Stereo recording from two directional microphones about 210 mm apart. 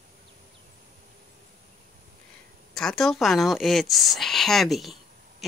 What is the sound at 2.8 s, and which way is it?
Speech, centre (ahead or behind).